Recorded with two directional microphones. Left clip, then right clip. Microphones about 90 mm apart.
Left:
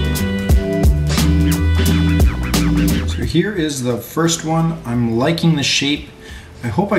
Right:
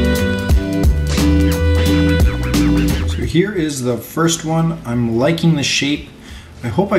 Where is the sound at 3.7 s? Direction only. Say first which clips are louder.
Even; 15° left (ahead or behind).